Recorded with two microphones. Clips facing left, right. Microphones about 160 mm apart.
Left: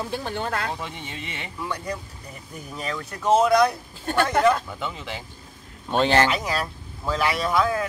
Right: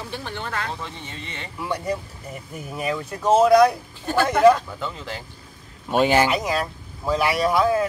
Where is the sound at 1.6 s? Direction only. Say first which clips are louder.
Right 5 dB; 20° right (ahead or behind).